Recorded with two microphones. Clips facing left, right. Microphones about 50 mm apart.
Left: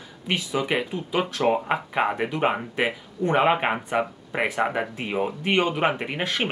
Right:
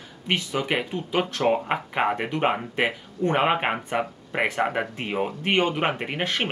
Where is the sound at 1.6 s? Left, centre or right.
Centre.